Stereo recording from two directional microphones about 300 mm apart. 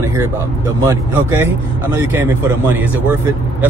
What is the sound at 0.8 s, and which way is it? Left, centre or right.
Speech, centre.